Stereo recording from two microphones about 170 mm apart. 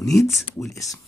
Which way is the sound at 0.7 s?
20° left (ahead or behind).